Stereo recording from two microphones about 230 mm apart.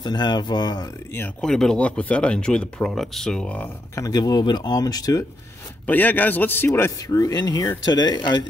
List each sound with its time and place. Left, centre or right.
0.0 s speech: centre